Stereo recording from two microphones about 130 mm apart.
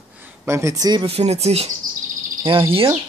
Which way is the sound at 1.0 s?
55° right (ahead or behind).